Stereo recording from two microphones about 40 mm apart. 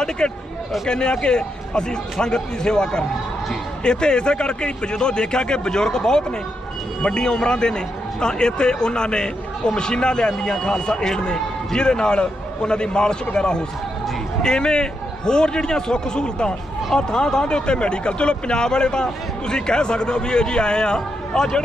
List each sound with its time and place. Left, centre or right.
0.2 s a man's voice: left